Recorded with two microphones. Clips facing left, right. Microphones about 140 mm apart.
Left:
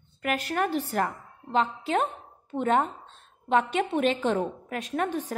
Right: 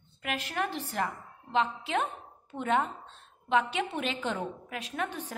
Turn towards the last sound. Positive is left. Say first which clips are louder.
# left 6 dB
turn(degrees=40)  # may be behind; listen again after turning